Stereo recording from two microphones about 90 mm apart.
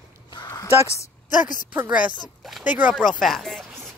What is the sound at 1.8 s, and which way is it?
Speech, 15° right (ahead or behind).